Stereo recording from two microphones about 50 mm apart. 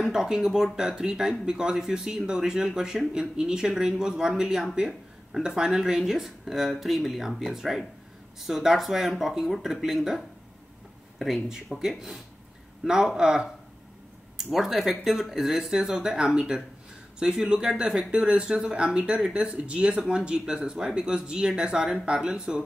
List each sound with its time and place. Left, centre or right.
0.1 s speech: centre
11.4 s speech: centre